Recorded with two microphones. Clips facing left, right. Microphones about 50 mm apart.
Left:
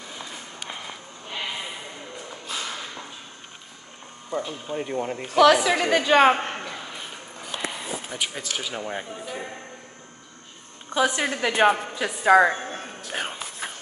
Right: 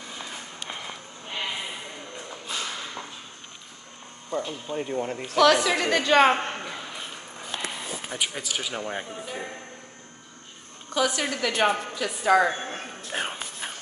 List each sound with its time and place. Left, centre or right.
0.2 s run: centre
2.2 s music: centre
4.3 s a woman's voice: centre
6.7 s a sound: centre
8.1 s speech: centre
10.9 s a woman's voice: left
13.1 s music: centre